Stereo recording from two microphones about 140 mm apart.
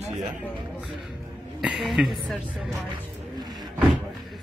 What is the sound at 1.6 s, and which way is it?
A woman's voice, 5° right (ahead or behind).